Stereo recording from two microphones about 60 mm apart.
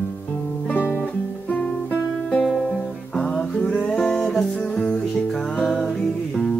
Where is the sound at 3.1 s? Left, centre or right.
Centre.